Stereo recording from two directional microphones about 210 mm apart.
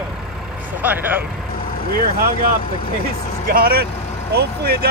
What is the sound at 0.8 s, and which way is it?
Speech, 10° right (ahead or behind).